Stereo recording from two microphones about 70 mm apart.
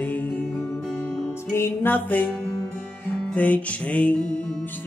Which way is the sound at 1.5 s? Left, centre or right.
Left.